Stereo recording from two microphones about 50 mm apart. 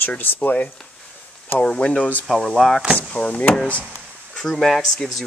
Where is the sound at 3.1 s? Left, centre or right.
Left.